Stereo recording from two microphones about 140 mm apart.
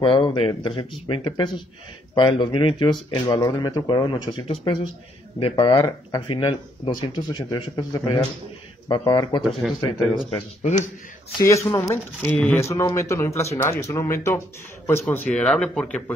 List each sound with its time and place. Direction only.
0.0 s speech: 35° left (ahead or behind)
10.6 s speech: 60° left (ahead or behind)
11.3 s speech: 20° left (ahead or behind)
15.3 s speech: 5° left (ahead or behind)